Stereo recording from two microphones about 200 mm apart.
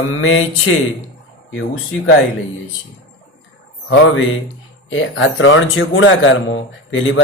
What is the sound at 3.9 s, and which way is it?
Speech, 75° left (ahead or behind).